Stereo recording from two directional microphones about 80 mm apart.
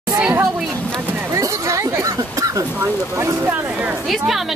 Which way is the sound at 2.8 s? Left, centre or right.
Right.